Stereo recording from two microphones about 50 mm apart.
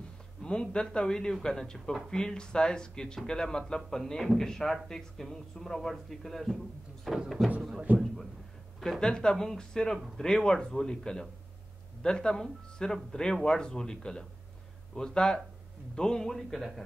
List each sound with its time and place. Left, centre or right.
0.4 s a man's voice: centre
7.9 s a man's voice: right
9.0 s a man's voice: centre